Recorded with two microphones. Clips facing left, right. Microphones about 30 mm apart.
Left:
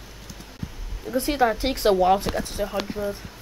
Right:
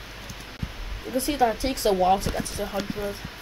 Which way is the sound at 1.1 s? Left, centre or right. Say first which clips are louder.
Left 1 dB; centre.